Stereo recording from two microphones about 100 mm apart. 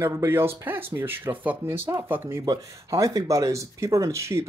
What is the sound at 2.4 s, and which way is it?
Speech, 35° right (ahead or behind).